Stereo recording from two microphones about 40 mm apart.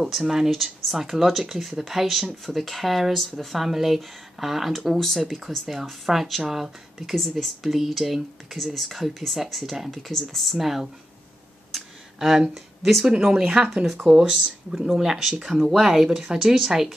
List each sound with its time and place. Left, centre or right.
0.2 s speech: centre
0.5 s speech: centre
4.9 s speech: centre
5.2 s speech: centre
7.2 s speech: centre
11.7 s a sound: centre
13.0 s speech: right
14.0 s speech: centre